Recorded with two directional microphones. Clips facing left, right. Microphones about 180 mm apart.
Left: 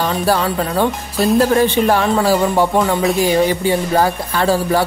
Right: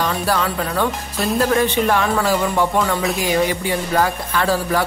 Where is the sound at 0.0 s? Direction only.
30° left (ahead or behind).